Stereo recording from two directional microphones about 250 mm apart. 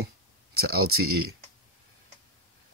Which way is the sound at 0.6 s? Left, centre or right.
Right.